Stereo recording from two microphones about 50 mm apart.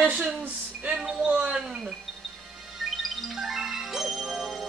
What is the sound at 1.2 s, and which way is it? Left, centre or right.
Speech, right.